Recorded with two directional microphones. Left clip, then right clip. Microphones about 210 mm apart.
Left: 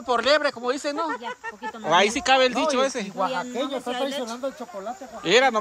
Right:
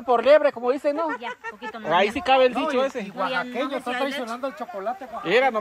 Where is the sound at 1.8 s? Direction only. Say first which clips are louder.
Left 1 dB; 5° right (ahead or behind).